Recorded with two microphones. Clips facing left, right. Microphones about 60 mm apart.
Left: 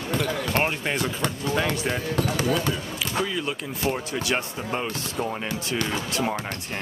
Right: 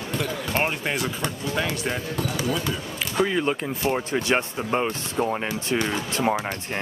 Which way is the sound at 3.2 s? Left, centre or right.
Right.